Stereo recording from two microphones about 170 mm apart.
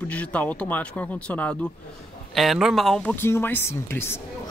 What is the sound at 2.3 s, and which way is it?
Speech, centre (ahead or behind).